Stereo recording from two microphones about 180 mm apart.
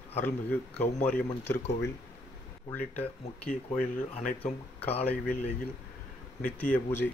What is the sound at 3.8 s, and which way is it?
Speech, 40° left (ahead or behind).